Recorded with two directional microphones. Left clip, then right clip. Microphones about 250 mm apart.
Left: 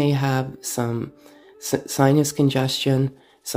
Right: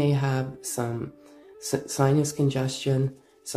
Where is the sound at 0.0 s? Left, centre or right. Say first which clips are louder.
Left 4 dB; left.